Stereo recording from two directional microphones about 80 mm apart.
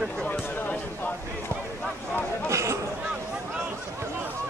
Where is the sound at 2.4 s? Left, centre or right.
Right.